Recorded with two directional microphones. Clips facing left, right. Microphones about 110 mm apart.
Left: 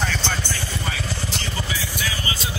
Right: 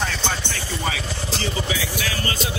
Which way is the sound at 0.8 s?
85° right.